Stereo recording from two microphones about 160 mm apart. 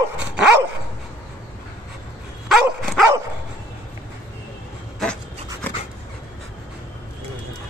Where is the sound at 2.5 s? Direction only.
Centre (ahead or behind).